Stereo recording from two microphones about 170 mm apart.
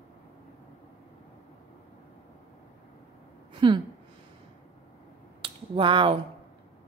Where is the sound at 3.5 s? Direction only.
30° right (ahead or behind).